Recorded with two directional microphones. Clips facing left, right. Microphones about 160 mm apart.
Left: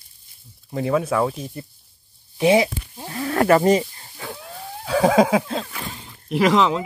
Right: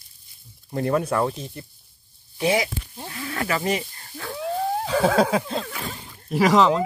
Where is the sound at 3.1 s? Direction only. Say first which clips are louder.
Left 10 dB; 40° left (ahead or behind).